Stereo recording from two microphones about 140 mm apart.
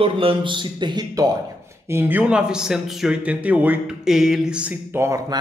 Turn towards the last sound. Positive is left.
turn(degrees=-15)  # may be behind; listen again after turning